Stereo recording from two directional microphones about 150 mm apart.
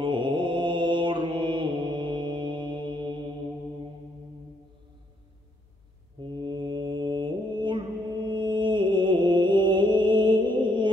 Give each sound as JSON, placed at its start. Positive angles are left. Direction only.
{"t": 0.0, "sound": "mantra", "side_deg": -30}
{"t": 6.2, "sound": "mantra", "side_deg": -30}